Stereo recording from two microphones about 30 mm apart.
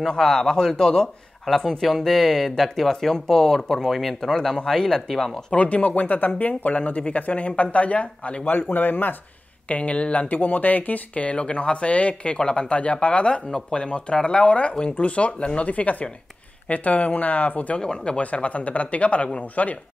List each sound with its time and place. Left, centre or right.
0.3 s a man's voice: left
1.5 s speech: centre
5.5 s speech: left
6.7 s speech: left
8.7 s speech: left
9.7 s speech: left
10.3 s speech: left
11.3 s speech: left
13.5 s a man's voice: left
13.8 s speech: left
15.7 s speech: left
17.7 s speech: left
18.2 s speech: left